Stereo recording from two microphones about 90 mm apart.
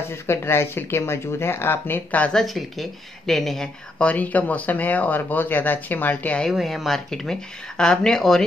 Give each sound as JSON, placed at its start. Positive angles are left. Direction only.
{"t": 0.1, "sound": "speech", "side_deg": 30}
{"t": 2.4, "sound": "speech", "side_deg": 0}
{"t": 6.4, "sound": "speech", "side_deg": 0}